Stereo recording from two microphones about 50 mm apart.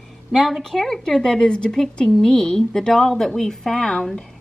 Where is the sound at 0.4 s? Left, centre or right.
Centre.